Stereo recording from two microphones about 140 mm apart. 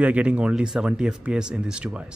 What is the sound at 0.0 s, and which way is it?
Speech, 10° right (ahead or behind).